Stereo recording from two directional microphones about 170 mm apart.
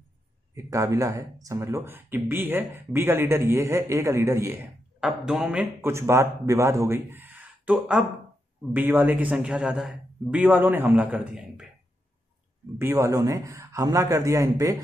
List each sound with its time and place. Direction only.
0.7 s speech: 20° right (ahead or behind)
5.0 s speech: 5° right (ahead or behind)
5.8 s speech: 15° right (ahead or behind)
12.7 s speech: 15° right (ahead or behind)